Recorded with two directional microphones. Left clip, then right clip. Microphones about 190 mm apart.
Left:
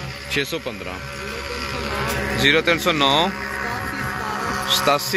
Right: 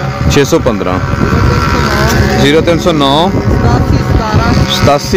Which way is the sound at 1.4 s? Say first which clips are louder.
Right 14 dB; 45° right (ahead or behind).